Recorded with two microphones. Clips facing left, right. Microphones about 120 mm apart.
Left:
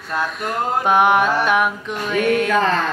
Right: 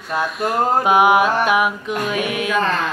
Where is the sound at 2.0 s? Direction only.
10° right (ahead or behind).